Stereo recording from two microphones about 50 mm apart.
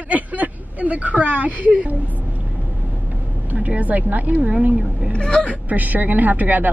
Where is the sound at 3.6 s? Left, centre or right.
Right.